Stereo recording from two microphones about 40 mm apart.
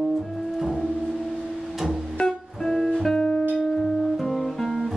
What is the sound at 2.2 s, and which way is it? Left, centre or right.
Music, centre.